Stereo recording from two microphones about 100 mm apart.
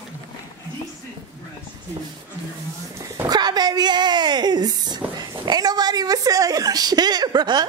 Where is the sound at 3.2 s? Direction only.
45° right (ahead or behind).